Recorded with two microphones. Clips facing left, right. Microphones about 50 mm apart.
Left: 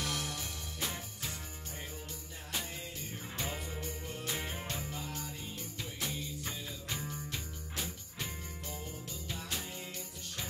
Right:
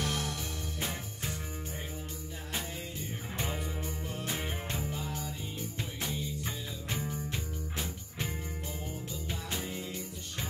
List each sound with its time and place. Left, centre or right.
0.0 s music: right
0.7 s music: right
4.3 s music: right
5.8 s music: right
7.0 s jingle bell: centre